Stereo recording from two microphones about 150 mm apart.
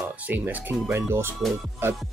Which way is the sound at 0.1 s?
10° right (ahead or behind).